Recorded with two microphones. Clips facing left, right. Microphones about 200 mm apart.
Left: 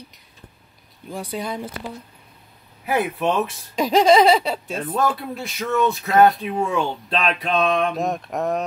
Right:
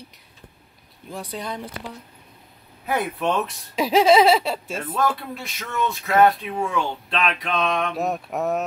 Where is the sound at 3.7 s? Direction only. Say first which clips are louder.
Left 1 dB; 5° right (ahead or behind).